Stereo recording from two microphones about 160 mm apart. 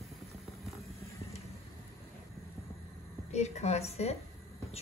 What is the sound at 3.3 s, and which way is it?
Speech, 45° left (ahead or behind).